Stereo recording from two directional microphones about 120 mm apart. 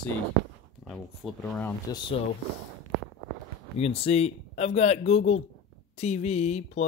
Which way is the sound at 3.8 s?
60° left (ahead or behind).